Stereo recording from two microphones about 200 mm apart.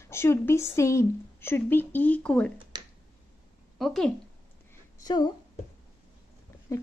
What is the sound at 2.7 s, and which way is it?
Finger snapping, 20° right (ahead or behind).